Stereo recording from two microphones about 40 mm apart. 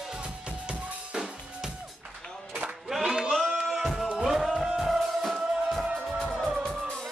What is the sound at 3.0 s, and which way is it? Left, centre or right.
Music, centre.